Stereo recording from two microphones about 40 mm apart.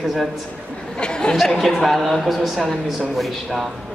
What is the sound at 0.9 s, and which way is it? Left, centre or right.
Chatter, left.